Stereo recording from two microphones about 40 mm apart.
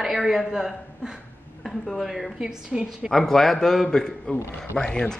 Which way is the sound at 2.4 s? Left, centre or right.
Right.